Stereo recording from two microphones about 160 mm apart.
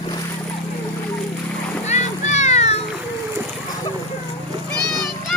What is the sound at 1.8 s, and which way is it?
Music, 45° left (ahead or behind).